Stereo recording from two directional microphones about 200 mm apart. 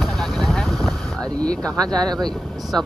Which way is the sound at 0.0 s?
Centre (ahead or behind).